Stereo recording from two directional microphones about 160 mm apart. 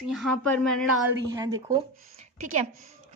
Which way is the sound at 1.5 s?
25° right (ahead or behind).